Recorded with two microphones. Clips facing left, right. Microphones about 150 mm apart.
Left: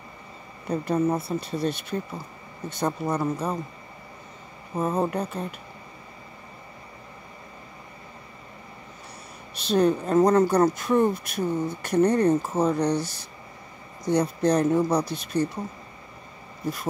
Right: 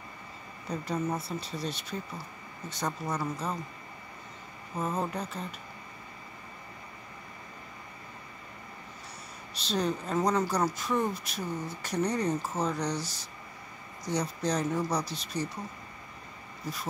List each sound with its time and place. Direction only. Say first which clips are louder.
0.7 s speech: left 8 dB; 55° left (ahead or behind)
4.7 s speech: left 7 dB; 60° left (ahead or behind)
9.6 s speech: left 9 dB; 55° left (ahead or behind)